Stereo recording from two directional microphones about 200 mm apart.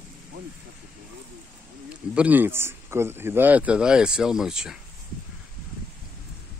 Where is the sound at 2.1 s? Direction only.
10° right (ahead or behind).